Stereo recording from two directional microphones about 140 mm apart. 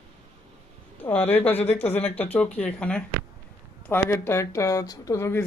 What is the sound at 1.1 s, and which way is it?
Speech, 15° left (ahead or behind).